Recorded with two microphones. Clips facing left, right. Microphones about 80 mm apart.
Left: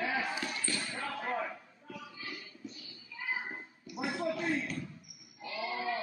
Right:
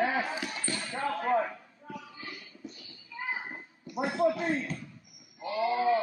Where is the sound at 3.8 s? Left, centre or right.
Right.